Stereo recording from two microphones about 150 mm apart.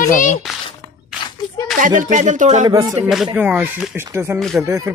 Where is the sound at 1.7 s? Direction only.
60° right (ahead or behind).